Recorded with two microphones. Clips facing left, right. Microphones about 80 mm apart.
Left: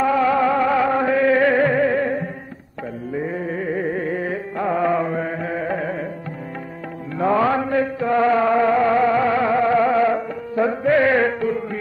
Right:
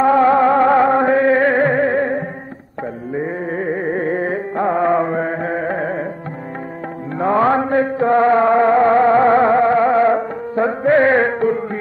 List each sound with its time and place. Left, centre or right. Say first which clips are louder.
0.0 s music: right 5 dB; right
7.2 s music: right 3 dB; right